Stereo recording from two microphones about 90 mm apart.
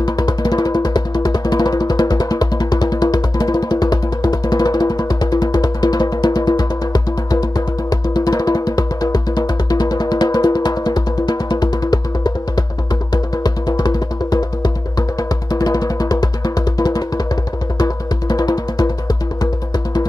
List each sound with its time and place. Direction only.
0.0 s music: 50° left (ahead or behind)